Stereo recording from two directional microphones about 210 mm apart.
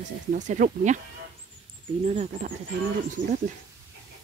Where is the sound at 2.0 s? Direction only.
35° right (ahead or behind).